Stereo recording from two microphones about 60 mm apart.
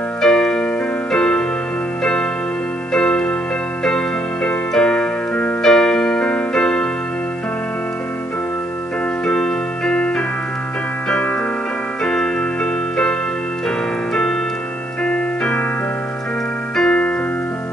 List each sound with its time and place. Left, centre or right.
0.2 s keyboard: centre
1.1 s music: centre
2.9 s music: centre
4.7 s keyboard: centre
5.6 s keyboard: centre
9.2 s music: centre
12.0 s keyboard: centre
15.0 s keyboard: centre
16.7 s keyboard: centre